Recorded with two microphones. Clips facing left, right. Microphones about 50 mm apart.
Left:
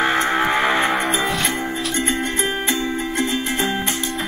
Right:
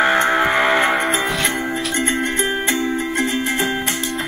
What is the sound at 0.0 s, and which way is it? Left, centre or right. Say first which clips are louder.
Music: right 3 dB; right.